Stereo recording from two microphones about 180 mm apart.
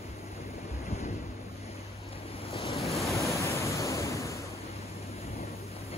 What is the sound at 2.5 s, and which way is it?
Waves, 35° left (ahead or behind).